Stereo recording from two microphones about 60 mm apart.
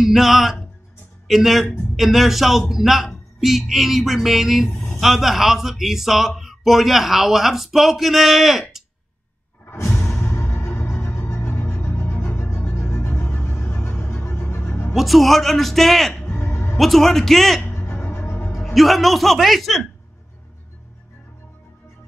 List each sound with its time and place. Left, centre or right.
0.0 s speech: centre
10.4 s music: left
12.3 s music: left
13.3 s music: left
15.0 s speech: centre
16.3 s music: left
16.7 s speech: centre
17.6 s music: left
18.6 s speech: centre